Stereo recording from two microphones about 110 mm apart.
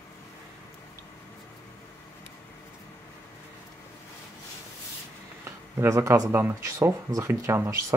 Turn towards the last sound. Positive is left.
turn(degrees=-25)  # may be behind; listen again after turning